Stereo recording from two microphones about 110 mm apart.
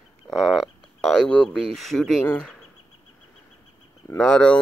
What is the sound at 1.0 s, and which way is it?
Speech, 5° left (ahead or behind).